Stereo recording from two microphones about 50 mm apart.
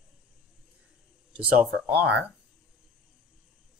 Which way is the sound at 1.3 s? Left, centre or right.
Right.